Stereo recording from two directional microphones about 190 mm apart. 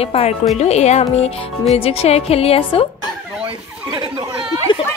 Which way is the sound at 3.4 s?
20° right (ahead or behind).